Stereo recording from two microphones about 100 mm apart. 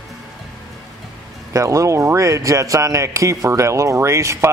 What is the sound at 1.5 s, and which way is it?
A man's voice, 30° right (ahead or behind).